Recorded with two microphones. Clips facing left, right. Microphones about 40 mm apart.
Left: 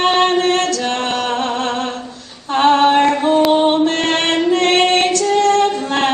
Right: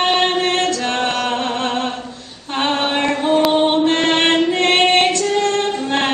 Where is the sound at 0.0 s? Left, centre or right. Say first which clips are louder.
Left 2 dB; right.